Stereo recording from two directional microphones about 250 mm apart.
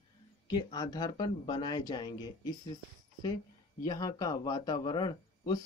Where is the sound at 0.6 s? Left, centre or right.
Centre.